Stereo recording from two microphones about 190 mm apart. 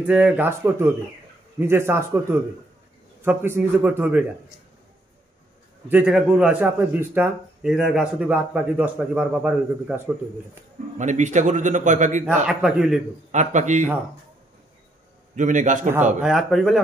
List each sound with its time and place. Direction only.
0.0 s speech: 5° right (ahead or behind)
5.9 s speech: 5° right (ahead or behind)
11.0 s a man's voice: 40° right (ahead or behind)
12.4 s speech: 5° right (ahead or behind)
13.3 s a man's voice: 40° right (ahead or behind)
15.3 s a man's voice: 40° right (ahead or behind)
16.2 s speech: 5° right (ahead or behind)